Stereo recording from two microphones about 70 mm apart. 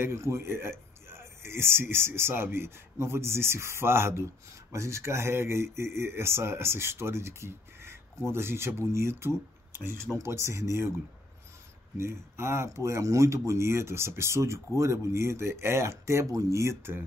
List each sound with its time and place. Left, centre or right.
0.0 s speech: right
12.0 s speech: right